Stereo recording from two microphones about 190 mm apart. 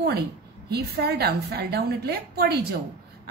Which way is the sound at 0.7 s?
55° right (ahead or behind).